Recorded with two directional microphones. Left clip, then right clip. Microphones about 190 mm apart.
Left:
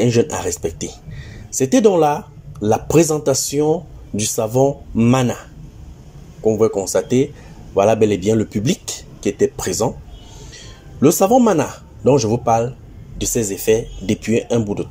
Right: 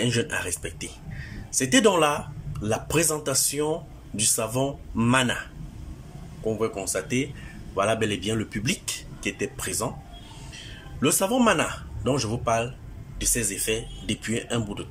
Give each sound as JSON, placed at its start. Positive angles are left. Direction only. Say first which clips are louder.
{"t": 0.0, "sound": "speech", "louder": "left 9 dB", "side_deg": 20}
{"t": 6.4, "sound": "speech", "louder": "left 11 dB", "side_deg": 20}